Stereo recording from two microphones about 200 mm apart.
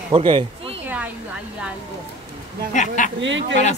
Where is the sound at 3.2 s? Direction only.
65° right (ahead or behind).